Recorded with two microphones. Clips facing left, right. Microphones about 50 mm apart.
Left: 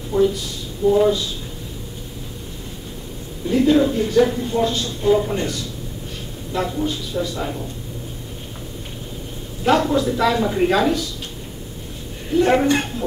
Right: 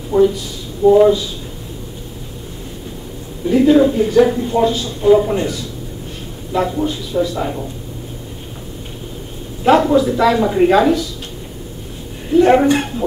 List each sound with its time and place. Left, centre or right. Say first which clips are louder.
0.1 s a woman's voice: right 5 dB; centre
3.4 s a woman's voice: right 5 dB; centre
9.7 s a woman's voice: right 5 dB; centre
12.4 s a woman's voice: right 6 dB; centre